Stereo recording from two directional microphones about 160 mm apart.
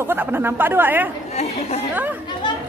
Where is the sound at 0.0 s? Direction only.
15° right (ahead or behind).